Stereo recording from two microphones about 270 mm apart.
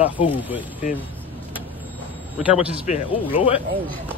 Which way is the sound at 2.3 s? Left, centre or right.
Centre.